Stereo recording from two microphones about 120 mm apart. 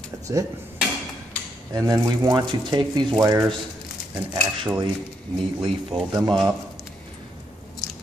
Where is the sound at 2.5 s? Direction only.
40° right (ahead or behind).